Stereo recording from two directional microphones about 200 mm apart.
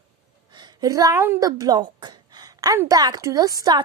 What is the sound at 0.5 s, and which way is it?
A woman's voice, 20° right (ahead or behind).